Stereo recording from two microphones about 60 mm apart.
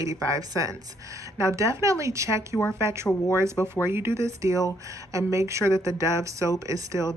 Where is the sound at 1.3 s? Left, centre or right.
Right.